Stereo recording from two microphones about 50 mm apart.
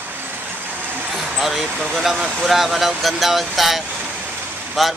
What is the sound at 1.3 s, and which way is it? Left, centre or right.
A man's voice, centre.